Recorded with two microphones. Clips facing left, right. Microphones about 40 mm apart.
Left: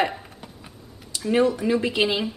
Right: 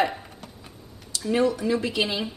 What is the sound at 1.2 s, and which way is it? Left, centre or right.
Speech, left.